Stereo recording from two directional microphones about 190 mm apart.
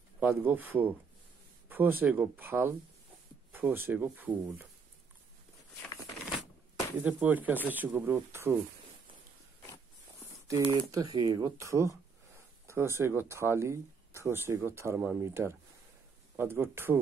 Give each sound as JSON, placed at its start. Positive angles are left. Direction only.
{"t": 0.2, "sound": "speech", "side_deg": -10}
{"t": 7.0, "sound": "speech", "side_deg": -10}
{"t": 10.5, "sound": "speech", "side_deg": -15}